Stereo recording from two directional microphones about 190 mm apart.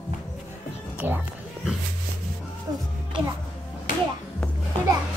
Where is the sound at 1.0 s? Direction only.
10° right (ahead or behind).